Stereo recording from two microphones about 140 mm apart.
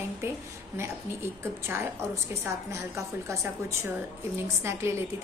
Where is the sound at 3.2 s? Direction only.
20° right (ahead or behind).